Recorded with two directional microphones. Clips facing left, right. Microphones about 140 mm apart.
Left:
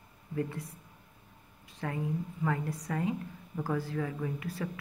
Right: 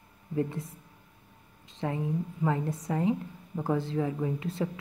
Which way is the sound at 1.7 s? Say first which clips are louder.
Right 4 dB; 20° right (ahead or behind).